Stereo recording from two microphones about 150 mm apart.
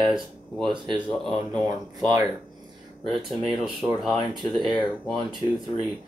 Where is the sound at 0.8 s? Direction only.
30° right (ahead or behind).